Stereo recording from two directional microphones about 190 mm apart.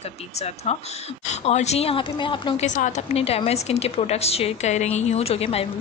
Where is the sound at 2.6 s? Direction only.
40° left (ahead or behind).